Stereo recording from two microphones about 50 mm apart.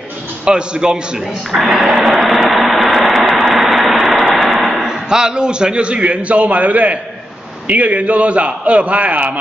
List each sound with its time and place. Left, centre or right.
0.5 s a man's voice: centre
1.6 s vehicle: centre
4.4 s a sound: centre
4.8 s a man's voice: centre